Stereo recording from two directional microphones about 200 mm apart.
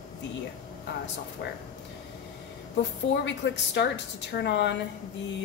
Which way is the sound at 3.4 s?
60° left (ahead or behind).